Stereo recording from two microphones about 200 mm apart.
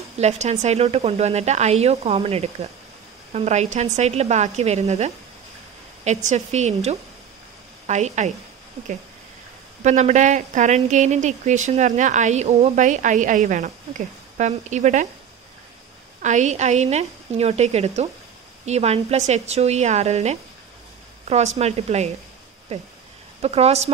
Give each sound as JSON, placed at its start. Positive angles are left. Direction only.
{"t": 0.2, "sound": "a woman's voice", "side_deg": -35}
{"t": 9.8, "sound": "a woman's voice", "side_deg": -35}
{"t": 16.2, "sound": "a woman's voice", "side_deg": -35}